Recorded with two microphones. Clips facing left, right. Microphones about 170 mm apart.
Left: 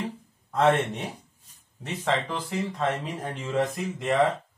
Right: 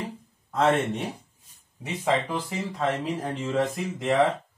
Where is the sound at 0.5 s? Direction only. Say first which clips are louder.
Even; centre (ahead or behind).